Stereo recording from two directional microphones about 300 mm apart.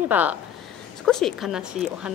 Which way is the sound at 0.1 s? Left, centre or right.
Centre.